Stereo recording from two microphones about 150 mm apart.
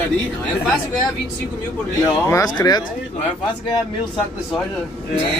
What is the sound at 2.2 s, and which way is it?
Speech, 25° left (ahead or behind).